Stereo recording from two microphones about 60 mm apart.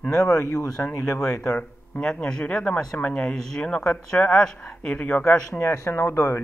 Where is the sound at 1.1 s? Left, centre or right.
Centre.